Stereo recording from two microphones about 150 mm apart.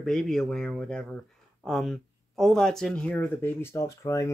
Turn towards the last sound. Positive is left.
turn(degrees=20)  # may be behind; listen again after turning